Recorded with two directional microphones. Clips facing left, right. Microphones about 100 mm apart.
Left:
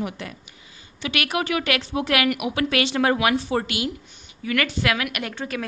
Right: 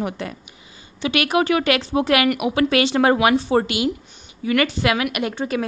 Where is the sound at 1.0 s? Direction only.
25° right (ahead or behind).